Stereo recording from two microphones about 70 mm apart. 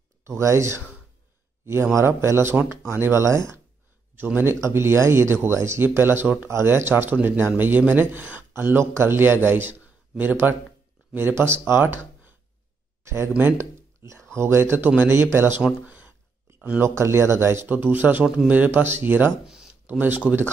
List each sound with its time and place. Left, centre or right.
0.2 s speech: right
2.0 s speech: right
4.2 s speech: right
13.0 s speech: right
15.9 s a sound: right
16.8 s speech: right
17.6 s speech: right
19.4 s a sound: centre
19.9 s speech: right